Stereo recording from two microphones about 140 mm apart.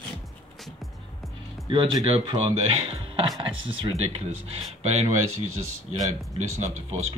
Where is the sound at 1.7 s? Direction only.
40° right (ahead or behind).